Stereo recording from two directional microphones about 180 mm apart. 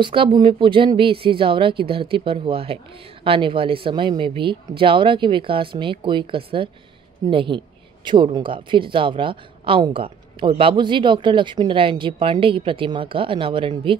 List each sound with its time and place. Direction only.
0.0 s speech: 30° right (ahead or behind)